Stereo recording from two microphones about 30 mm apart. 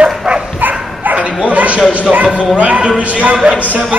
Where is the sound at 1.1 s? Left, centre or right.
Right.